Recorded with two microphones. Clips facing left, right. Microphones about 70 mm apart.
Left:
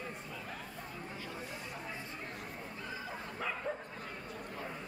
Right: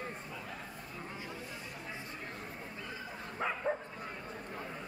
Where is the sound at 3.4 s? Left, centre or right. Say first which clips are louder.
Right 5 dB; right.